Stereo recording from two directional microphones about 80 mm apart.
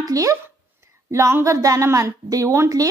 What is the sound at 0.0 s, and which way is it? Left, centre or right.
Speech, right.